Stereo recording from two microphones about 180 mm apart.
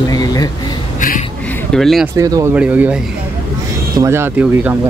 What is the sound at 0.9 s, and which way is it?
Speech, 45° left (ahead or behind).